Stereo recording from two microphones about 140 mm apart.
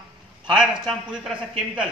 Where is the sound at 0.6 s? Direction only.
5° right (ahead or behind).